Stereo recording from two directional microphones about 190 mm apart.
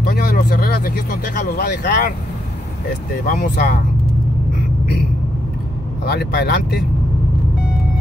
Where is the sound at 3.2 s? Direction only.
45° left (ahead or behind).